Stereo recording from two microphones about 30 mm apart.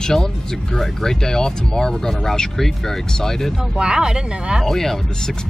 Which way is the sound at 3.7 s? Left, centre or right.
Right.